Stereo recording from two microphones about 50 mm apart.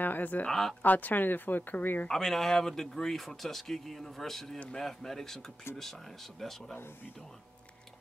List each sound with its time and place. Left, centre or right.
0.0 s speech: left
0.5 s speech: centre
0.8 s speech: left
2.0 s speech: centre
6.4 s speech: centre